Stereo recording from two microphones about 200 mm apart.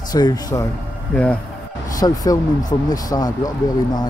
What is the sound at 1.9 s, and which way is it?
Speech, 20° left (ahead or behind).